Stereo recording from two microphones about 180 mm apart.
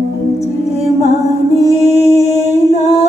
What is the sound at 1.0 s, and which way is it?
Music, 35° left (ahead or behind).